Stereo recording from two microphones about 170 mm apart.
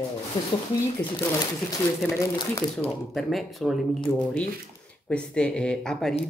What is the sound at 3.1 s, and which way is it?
Speech, centre (ahead or behind).